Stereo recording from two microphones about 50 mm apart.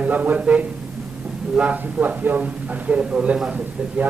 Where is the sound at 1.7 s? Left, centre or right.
Right.